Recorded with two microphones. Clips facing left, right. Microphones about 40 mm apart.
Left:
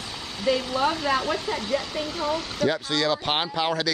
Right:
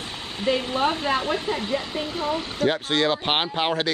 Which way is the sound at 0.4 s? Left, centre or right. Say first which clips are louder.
Right 1 dB; right.